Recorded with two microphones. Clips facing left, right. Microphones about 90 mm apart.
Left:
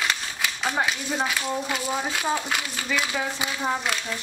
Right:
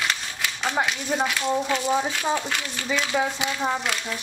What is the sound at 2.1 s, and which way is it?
Speech, 10° left (ahead or behind).